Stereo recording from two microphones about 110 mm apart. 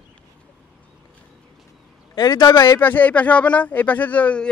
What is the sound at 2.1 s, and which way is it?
Speech, 45° left (ahead or behind).